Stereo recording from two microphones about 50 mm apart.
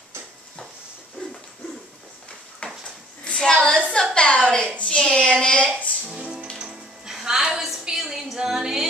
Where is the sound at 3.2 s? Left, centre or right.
Centre.